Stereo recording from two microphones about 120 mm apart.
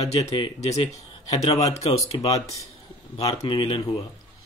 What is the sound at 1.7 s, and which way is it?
Speech, 60° left (ahead or behind).